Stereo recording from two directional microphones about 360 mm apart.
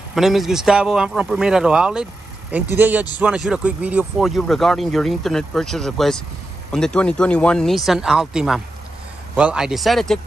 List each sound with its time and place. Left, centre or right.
0.1 s speech: centre